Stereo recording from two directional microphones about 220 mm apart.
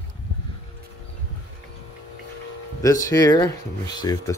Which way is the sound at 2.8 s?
15° left (ahead or behind).